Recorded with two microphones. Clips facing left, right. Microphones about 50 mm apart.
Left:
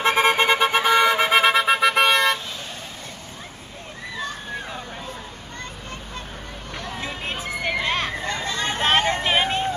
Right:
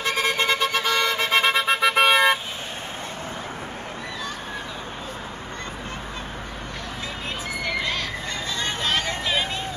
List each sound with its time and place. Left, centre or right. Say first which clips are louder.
0.0 s vehicle: left 5 dB; left; by 2.3 s centre
7.8 s children playing: left 3 dB; left
8.3 s a sound: left 3 dB; centre
8.7 s vehicle: left 8 dB; left